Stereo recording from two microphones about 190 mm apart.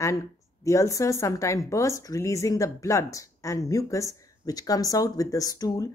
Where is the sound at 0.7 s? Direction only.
15° left (ahead or behind).